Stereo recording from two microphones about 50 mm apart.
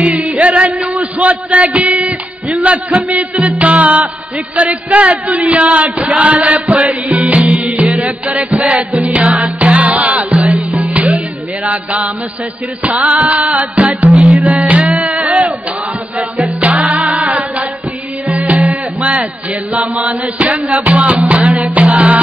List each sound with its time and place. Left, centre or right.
0.0 s music: right
14.1 s music: centre
14.4 s music: right
16.3 s music: centre
16.6 s music: right
17.2 s a sound: right
18.3 s music: right